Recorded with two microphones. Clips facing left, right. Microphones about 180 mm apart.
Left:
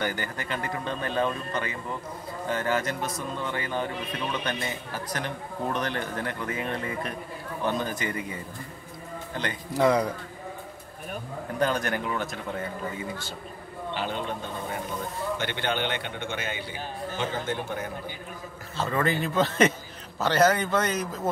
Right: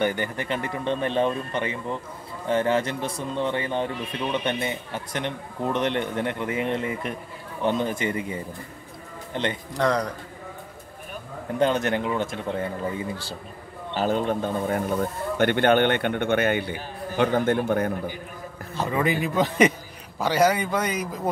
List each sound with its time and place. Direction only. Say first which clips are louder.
0.0 s a man's voice: right 6 dB; 25° right (ahead or behind)
9.8 s a man's voice: left 2 dB; 5° left (ahead or behind)
11.5 s speech: right 4 dB; 25° right (ahead or behind)
13.9 s speech: right 9 dB; 40° right (ahead or behind); by 17.9 s 55° right (ahead or behind)
18.8 s a man's voice: right 2 dB; 15° right (ahead or behind)